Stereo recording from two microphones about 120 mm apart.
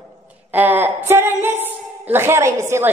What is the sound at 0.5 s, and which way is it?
A woman's voice, 15° right (ahead or behind).